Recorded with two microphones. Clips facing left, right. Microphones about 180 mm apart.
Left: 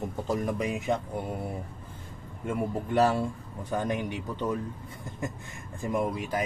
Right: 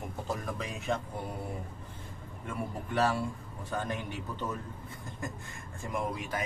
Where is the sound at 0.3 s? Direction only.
15° left (ahead or behind).